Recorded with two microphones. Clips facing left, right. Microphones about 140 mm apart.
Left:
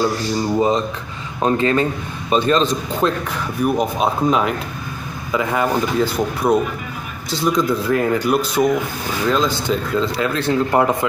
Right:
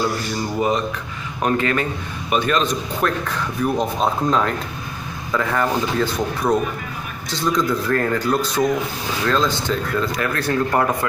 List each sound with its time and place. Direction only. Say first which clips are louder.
0.6 s a man's voice: left 1 dB; 25° left (ahead or behind)
3.6 s a man's voice: left 2 dB; 10° left (ahead or behind)